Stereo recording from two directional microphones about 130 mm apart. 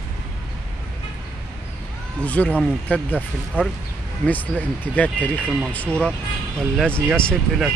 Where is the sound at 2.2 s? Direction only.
10° left (ahead or behind).